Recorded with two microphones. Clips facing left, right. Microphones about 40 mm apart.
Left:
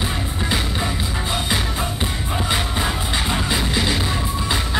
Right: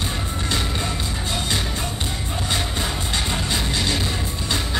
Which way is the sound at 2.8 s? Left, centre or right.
Centre.